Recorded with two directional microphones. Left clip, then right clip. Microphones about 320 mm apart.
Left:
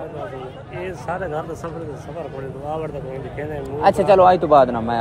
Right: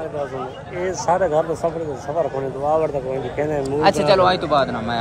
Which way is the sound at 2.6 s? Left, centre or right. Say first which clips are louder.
Right 9 dB; right.